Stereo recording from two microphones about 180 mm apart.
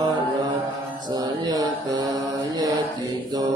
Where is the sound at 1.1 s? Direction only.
20° right (ahead or behind).